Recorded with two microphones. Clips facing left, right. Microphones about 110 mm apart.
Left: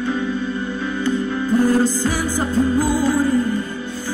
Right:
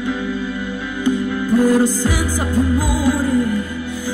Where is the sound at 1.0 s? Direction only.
15° right (ahead or behind).